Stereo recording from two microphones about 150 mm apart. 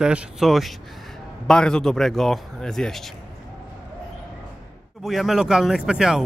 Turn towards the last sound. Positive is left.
turn(degrees=-5)  # may be behind; listen again after turning